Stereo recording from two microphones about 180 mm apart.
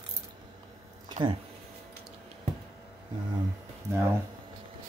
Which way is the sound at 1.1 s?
25° right (ahead or behind).